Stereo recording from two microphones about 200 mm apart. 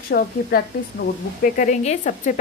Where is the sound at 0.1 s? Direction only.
50° left (ahead or behind).